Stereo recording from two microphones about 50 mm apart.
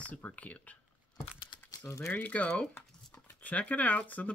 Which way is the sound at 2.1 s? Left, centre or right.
Left.